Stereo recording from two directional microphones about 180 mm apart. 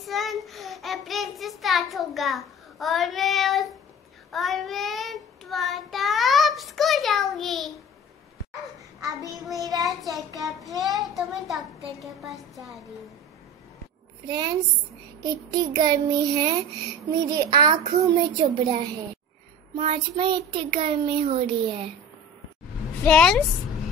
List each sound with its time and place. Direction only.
0.0 s child singing: centre (ahead or behind)
9.0 s a child's voice: 20° right (ahead or behind)
9.8 s a child's voice: centre (ahead or behind)
14.2 s a child's voice: 25° right (ahead or behind)
19.7 s a child's voice: 30° right (ahead or behind)
23.0 s a child's voice: 5° left (ahead or behind)